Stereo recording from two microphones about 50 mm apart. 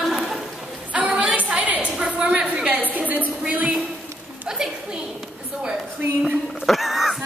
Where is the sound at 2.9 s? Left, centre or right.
Right.